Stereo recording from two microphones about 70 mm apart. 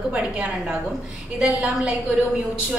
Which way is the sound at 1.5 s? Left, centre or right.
Right.